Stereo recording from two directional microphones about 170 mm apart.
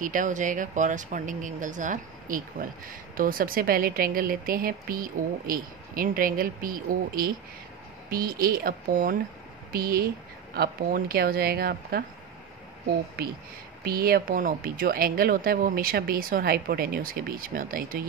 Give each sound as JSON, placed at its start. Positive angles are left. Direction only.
{"t": 0.0, "sound": "speech", "side_deg": -50}
{"t": 13.8, "sound": "speech", "side_deg": -60}